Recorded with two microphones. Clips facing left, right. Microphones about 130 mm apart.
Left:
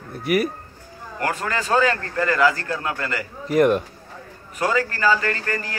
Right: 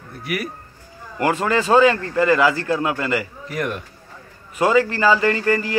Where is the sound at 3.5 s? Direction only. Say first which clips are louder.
Left 10 dB; 40° left (ahead or behind).